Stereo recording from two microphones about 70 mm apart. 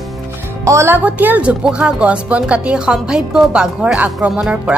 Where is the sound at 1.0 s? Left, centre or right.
Right.